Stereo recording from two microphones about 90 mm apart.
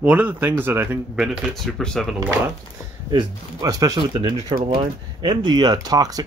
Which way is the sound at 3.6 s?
40° right (ahead or behind).